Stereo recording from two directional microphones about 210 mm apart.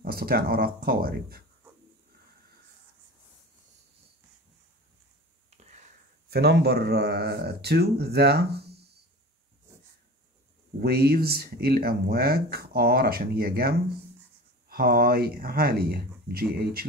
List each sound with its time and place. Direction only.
0.0 s speech: 45° right (ahead or behind)
6.3 s speech: 50° right (ahead or behind)
10.8 s speech: 50° right (ahead or behind)